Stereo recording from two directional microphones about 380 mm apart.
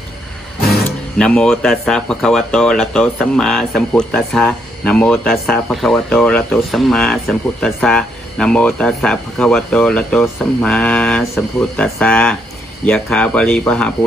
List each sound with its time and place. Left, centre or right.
0.7 s speech: centre